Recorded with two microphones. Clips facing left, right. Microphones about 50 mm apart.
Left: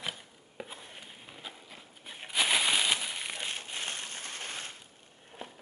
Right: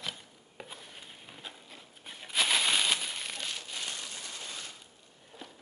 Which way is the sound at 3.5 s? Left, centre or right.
Left.